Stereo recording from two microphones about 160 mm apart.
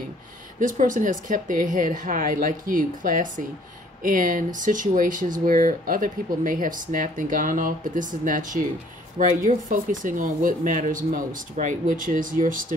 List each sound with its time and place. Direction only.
0.6 s speech: 55° right (ahead or behind)